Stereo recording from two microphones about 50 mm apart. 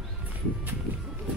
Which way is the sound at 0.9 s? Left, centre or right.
Right.